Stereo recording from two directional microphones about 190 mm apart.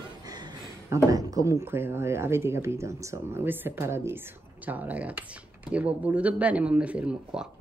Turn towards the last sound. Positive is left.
turn(degrees=-5)  # may be behind; listen again after turning